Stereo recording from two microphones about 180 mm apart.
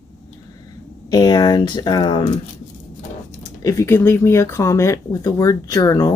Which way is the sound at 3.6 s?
15° left (ahead or behind).